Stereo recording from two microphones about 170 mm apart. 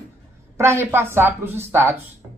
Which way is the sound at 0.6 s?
15° right (ahead or behind).